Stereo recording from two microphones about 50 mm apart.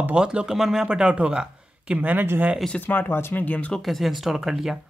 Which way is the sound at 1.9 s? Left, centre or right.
Right.